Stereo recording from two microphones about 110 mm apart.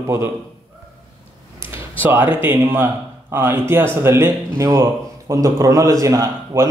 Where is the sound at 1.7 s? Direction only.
20° right (ahead or behind).